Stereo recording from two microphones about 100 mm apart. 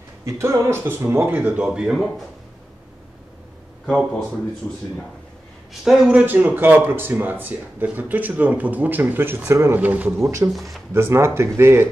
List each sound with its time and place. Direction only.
0.2 s speech: 30° right (ahead or behind)
1.3 s speech: 15° right (ahead or behind)
5.7 s speech: 5° right (ahead or behind)
10.2 s speech: 30° right (ahead or behind)